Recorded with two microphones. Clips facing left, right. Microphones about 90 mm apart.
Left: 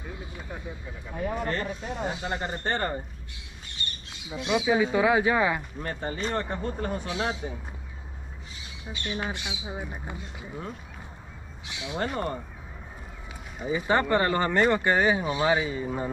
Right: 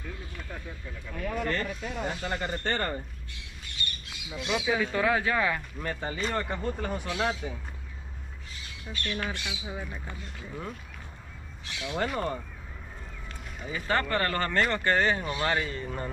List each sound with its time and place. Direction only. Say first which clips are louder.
0.0 s a sound: left 2 dB; 20° left (ahead or behind)
2.2 s speech: left 1 dB; 30° left (ahead or behind)
4.4 s speech: left 4 dB; 5° left (ahead or behind)
4.7 s speech: left 4 dB; 15° left (ahead or behind)
8.9 s speech: left 1 dB; 20° left (ahead or behind); by 12.4 s 5° left (ahead or behind)
13.7 s speech: left 5 dB; 20° left (ahead or behind)